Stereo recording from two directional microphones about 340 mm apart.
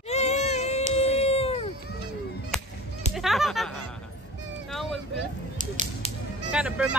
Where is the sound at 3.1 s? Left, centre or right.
Centre.